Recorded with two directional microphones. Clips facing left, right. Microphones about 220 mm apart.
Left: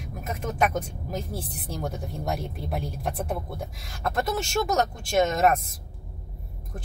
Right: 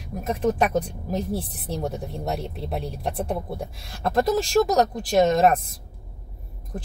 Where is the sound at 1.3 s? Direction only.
70° right (ahead or behind).